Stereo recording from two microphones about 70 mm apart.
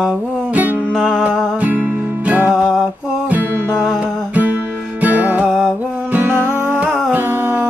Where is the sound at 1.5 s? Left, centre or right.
Right.